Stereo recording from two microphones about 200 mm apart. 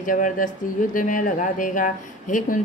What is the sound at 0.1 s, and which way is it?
Speech, 40° left (ahead or behind).